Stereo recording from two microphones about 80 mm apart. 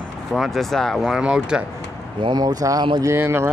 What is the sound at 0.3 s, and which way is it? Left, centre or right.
Speech, centre.